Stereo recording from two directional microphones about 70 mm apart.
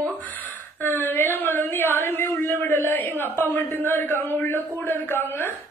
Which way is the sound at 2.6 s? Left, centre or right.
Left.